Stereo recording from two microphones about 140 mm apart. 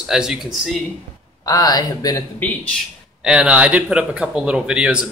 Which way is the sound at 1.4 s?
25° left (ahead or behind).